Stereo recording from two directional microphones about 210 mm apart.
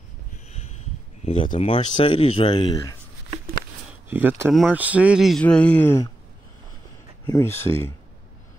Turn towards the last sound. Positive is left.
turn(degrees=10)  # may be behind; listen again after turning